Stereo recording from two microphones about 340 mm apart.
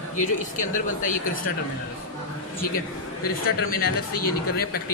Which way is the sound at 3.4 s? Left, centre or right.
Left.